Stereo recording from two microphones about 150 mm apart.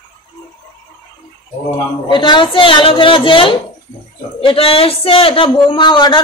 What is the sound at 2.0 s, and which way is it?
Speech, 30° left (ahead or behind).